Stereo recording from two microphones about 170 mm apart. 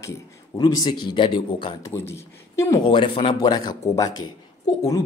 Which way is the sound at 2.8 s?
30° left (ahead or behind).